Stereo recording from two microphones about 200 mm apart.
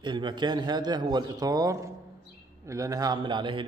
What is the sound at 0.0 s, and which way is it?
A man's voice, 25° right (ahead or behind).